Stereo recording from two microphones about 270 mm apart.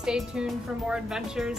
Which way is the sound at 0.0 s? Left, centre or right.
Centre.